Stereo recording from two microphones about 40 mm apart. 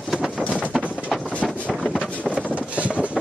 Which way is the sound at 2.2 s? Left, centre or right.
Right.